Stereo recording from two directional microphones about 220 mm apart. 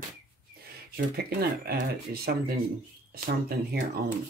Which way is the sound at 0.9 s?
45° right (ahead or behind).